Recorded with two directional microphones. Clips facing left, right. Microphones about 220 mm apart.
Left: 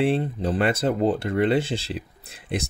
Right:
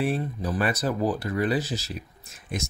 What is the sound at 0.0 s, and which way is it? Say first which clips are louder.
Speech: left 5 dB; 30° left (ahead or behind).